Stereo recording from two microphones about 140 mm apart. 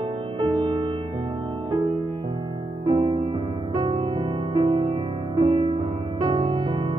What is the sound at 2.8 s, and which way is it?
Music, 45° right (ahead or behind).